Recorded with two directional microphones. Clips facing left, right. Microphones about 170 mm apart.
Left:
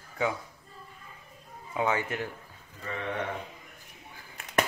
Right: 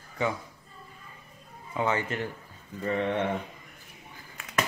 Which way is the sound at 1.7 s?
10° left (ahead or behind).